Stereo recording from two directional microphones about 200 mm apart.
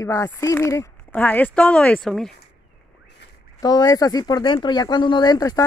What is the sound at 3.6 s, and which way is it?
Speech, 20° left (ahead or behind).